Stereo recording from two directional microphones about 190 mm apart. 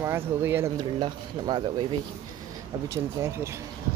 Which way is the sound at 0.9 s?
25° right (ahead or behind).